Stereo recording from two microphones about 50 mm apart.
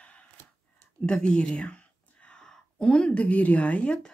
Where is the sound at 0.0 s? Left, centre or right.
Left.